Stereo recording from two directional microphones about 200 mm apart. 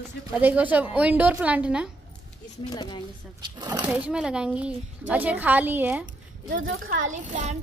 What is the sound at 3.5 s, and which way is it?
Speech, 20° right (ahead or behind).